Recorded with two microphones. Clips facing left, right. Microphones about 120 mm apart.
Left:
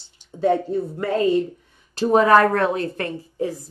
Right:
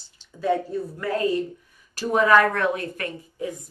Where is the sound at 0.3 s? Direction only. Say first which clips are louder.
Left 4 dB; 25° left (ahead or behind).